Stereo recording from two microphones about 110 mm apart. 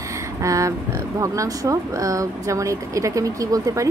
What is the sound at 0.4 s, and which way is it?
Speech, 30° right (ahead or behind).